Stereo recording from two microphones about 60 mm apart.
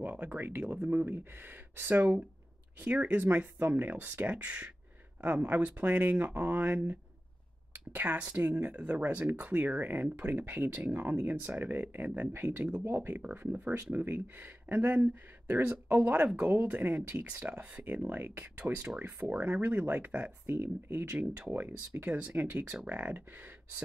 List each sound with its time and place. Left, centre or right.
0.0 s speech: right
13.0 s speech: right
20.4 s speech: right